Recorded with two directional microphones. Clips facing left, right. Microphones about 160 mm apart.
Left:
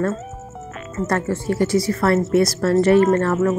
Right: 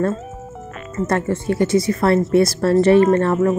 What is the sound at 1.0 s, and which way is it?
Speech, 20° right (ahead or behind).